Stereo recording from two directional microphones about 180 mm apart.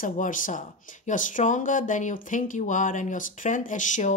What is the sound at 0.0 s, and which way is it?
Speech, 45° left (ahead or behind).